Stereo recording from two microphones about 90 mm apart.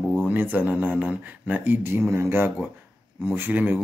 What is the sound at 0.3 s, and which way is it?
Speech, 20° right (ahead or behind).